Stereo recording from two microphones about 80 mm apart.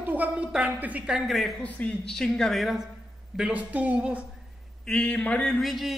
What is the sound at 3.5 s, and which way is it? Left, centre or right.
Speech, centre.